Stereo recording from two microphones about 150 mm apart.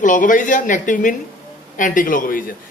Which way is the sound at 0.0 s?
60° left (ahead or behind).